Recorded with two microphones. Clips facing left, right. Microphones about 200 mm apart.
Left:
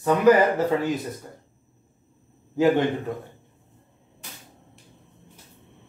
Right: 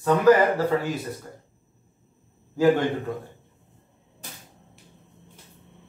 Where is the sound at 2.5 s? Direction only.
20° left (ahead or behind).